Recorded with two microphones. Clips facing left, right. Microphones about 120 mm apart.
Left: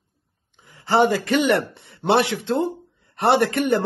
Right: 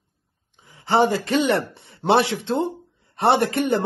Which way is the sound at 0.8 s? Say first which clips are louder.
Left 1 dB; 25° right (ahead or behind).